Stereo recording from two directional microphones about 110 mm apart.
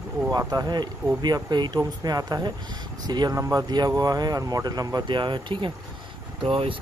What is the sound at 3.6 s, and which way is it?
Speech, 40° right (ahead or behind).